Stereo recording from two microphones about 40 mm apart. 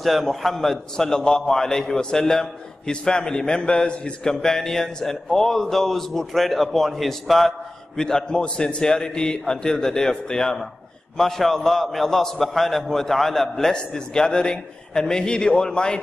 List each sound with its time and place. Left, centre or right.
0.0 s a man's voice: centre